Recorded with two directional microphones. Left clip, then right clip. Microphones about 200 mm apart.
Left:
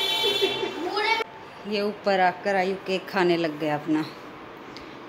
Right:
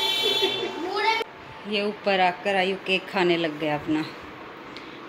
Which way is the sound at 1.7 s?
5° left (ahead or behind).